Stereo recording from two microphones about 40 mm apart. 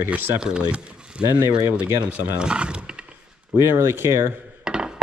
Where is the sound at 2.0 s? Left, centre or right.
Right.